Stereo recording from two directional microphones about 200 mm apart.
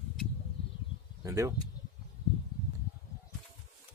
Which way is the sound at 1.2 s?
15° right (ahead or behind).